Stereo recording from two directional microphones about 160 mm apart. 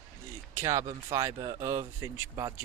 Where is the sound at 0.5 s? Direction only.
20° right (ahead or behind).